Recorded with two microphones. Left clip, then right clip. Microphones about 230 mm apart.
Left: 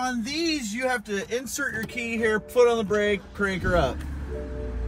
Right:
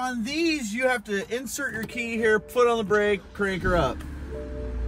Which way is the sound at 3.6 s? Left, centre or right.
Right.